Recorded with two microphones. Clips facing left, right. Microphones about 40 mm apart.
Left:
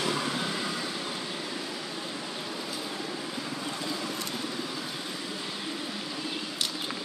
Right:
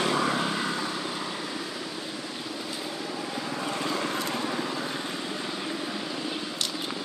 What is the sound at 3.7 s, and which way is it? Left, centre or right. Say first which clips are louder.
Vehicle: right 7 dB; right.